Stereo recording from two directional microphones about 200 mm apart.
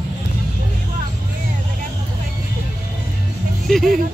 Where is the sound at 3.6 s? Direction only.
Centre (ahead or behind).